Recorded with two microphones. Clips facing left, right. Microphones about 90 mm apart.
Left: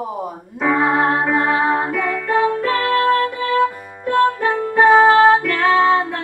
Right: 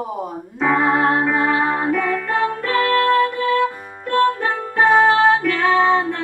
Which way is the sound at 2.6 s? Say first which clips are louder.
Even; 5° left (ahead or behind).